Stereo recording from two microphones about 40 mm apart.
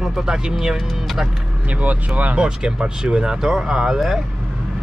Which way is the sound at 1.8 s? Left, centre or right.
Right.